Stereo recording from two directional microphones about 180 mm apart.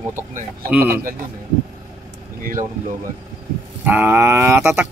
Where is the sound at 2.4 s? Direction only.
50° right (ahead or behind).